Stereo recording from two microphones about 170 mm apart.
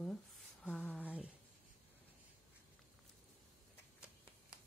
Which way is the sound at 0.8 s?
10° left (ahead or behind).